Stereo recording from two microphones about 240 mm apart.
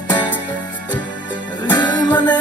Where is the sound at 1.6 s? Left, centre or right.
Centre.